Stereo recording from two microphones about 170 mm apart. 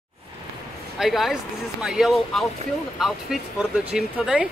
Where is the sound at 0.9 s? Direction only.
Centre (ahead or behind).